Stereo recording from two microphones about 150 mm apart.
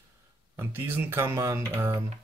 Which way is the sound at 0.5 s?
15° right (ahead or behind).